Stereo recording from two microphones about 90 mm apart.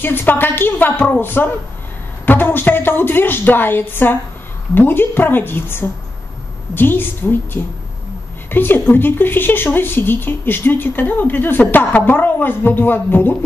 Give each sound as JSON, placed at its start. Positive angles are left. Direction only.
{"t": 0.0, "sound": "a woman's voice", "side_deg": 25}